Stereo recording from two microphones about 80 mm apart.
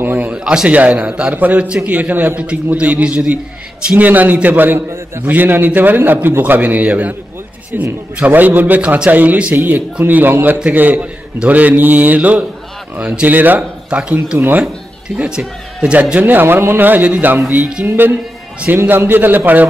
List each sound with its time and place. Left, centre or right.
0.0 s a sound: right
0.3 s a man's voice: centre
4.7 s a man's voice: right; by 14.1 s centre
14.1 s a man's voice: right